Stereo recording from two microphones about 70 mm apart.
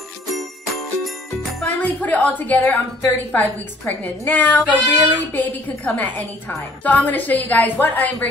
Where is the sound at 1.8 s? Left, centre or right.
Left.